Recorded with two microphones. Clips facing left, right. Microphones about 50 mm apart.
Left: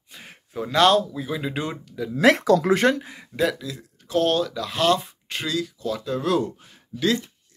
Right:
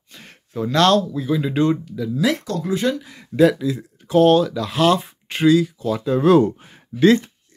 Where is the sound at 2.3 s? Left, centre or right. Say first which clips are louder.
Left 5 dB; left.